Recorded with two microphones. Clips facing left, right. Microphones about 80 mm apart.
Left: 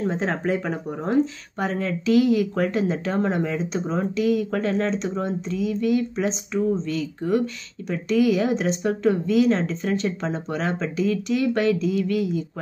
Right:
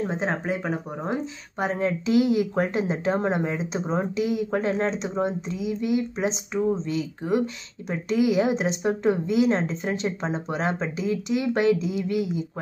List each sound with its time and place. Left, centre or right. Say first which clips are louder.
0.0 s speech: left 2 dB; centre
1.7 s speech: left 2 dB; right